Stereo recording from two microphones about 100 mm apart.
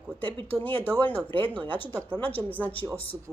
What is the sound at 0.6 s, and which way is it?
Speech, 15° left (ahead or behind).